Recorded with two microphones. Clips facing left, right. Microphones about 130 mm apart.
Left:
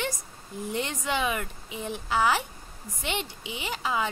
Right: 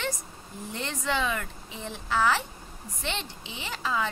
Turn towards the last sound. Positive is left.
turn(degrees=15)  # may be behind; listen again after turning